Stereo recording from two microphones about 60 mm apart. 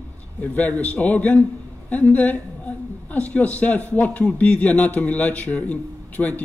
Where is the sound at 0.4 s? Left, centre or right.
Left.